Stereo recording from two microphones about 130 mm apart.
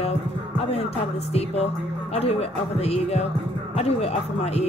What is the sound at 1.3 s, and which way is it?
Speech, 50° left (ahead or behind).